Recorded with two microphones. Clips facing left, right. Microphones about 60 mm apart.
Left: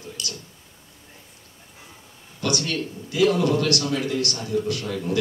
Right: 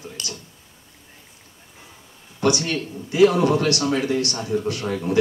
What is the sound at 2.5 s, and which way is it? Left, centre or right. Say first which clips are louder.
Speech: right 3 dB; right.